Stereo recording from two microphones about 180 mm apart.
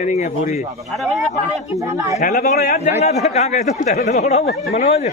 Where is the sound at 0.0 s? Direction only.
40° left (ahead or behind).